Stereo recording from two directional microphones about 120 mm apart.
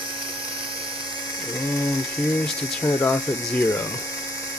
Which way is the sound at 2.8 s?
20° left (ahead or behind).